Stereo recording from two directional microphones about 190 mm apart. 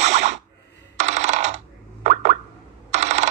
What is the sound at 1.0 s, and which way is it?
Coin, 35° right (ahead or behind).